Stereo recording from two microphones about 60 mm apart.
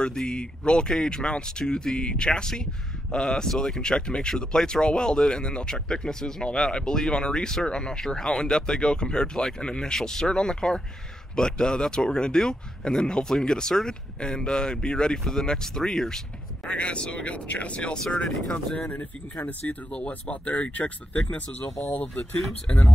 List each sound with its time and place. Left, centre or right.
0.0 s speech: centre
18.8 s speech: left